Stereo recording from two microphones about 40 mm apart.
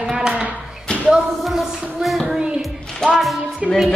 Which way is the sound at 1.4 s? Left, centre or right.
Centre.